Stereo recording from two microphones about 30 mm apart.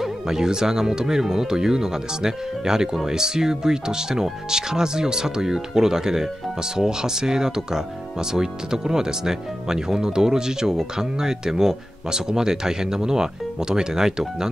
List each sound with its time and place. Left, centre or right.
0.0 s speech: centre